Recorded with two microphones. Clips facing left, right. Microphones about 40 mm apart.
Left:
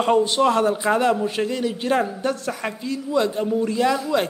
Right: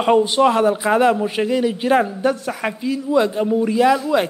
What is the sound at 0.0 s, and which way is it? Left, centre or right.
A man's voice, centre.